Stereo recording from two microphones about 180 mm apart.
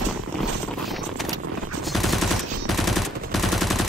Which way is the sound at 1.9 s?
Centre (ahead or behind).